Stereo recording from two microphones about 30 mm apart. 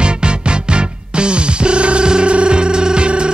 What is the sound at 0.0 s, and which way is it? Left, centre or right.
Music, right.